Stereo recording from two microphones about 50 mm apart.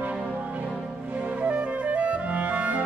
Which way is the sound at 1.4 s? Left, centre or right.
Right.